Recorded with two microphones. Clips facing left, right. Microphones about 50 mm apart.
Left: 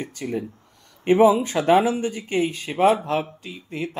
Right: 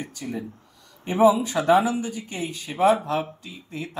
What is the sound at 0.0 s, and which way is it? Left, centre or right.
Speech, left.